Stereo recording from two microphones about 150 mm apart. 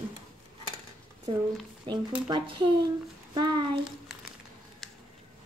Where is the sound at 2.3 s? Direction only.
35° right (ahead or behind).